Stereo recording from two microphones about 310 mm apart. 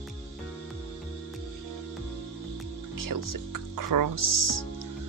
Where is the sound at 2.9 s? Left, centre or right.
Right.